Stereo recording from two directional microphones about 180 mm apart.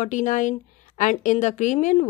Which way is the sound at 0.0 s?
45° left (ahead or behind).